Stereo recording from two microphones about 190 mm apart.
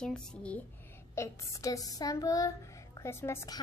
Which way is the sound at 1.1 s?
15° left (ahead or behind).